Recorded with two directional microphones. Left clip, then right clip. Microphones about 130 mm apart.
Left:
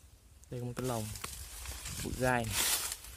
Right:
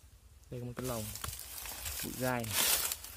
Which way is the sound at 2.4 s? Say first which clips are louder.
Right 1 dB; 85° right.